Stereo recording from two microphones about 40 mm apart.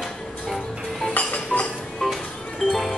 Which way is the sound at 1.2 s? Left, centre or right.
Left.